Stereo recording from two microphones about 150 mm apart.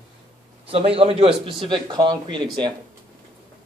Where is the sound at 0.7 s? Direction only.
40° right (ahead or behind).